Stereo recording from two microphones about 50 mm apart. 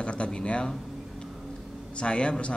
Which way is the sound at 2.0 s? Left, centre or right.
Left.